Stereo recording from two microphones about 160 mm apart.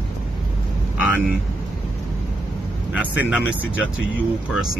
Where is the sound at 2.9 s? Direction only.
10° right (ahead or behind).